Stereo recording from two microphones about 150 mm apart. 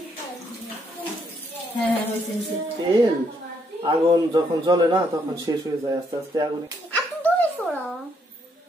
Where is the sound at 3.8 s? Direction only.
30° right (ahead or behind).